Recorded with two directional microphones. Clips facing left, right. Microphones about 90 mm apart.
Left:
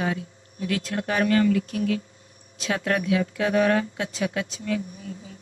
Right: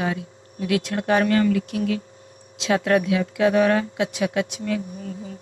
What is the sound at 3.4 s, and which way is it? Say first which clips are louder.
Speech: right 4 dB; 40° right (ahead or behind).